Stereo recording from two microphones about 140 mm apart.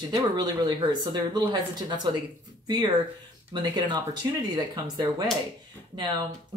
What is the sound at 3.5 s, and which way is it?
Speech, 30° right (ahead or behind).